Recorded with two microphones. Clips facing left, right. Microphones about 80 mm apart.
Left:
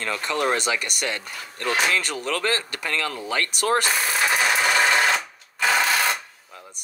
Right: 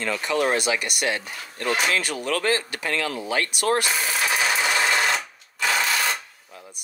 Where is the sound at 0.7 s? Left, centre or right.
Centre.